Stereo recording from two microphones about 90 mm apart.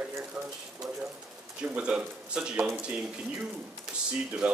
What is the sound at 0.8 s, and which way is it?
Speech, centre (ahead or behind).